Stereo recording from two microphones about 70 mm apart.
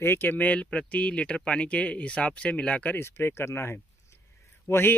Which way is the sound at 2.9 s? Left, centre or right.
Left.